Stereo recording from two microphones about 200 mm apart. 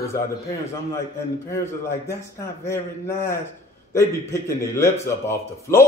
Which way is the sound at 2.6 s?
15° left (ahead or behind).